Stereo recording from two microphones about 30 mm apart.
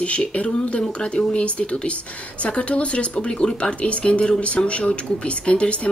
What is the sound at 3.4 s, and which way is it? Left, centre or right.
Speech, left.